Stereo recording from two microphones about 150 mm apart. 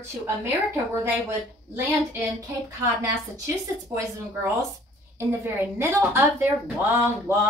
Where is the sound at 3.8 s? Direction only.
20° right (ahead or behind).